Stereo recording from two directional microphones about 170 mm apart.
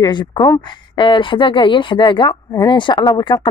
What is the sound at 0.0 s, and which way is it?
Speech, 25° left (ahead or behind).